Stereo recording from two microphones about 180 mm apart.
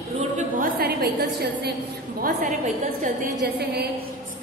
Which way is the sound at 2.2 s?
45° right (ahead or behind).